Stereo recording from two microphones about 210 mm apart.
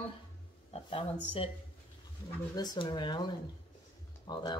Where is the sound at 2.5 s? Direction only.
20° left (ahead or behind).